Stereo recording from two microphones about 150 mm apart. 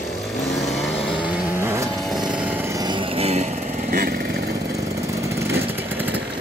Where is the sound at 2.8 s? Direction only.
40° right (ahead or behind).